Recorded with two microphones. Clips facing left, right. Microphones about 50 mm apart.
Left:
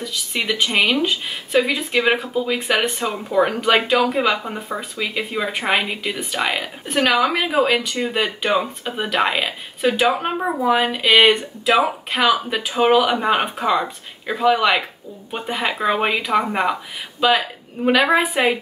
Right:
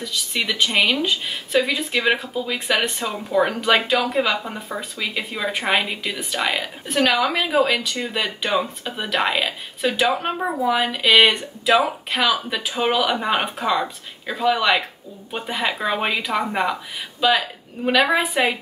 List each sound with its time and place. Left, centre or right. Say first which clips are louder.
0.0 s speech: left 1 dB; centre